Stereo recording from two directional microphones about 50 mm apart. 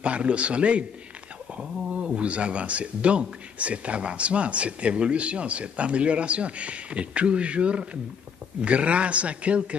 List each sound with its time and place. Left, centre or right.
0.0 s a man's voice: right
2.0 s a man's voice: right